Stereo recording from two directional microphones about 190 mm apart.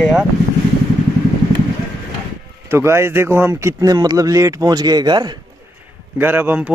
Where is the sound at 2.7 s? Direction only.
15° right (ahead or behind).